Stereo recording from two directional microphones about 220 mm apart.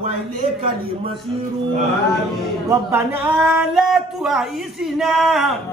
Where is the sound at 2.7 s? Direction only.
10° right (ahead or behind).